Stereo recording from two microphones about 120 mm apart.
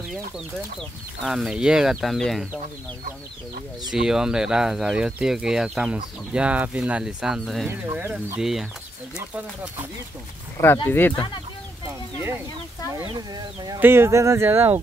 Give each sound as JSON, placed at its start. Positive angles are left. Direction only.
{"t": 0.7, "sound": "speech", "side_deg": 0}
{"t": 3.9, "sound": "speech", "side_deg": -5}
{"t": 7.8, "sound": "speech", "side_deg": -20}
{"t": 8.4, "sound": "speech", "side_deg": -5}
{"t": 10.9, "sound": "speech", "side_deg": 20}
{"t": 13.3, "sound": "speech", "side_deg": -35}
{"t": 13.7, "sound": "speech", "side_deg": -20}